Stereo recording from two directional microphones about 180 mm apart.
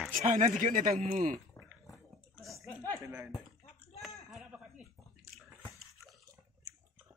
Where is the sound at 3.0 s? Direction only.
15° right (ahead or behind).